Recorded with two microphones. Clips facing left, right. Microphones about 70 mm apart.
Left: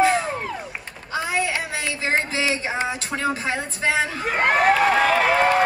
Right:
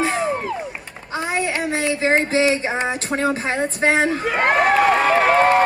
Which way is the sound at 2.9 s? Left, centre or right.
Right.